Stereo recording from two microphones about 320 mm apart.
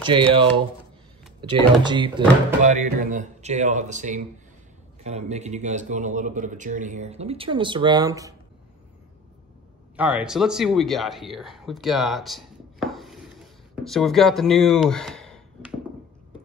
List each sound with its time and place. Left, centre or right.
1.5 s a man's voice: centre
9.9 s speech: centre